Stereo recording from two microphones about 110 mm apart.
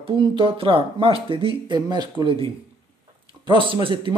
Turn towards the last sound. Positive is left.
turn(degrees=-50)  # may be behind; listen again after turning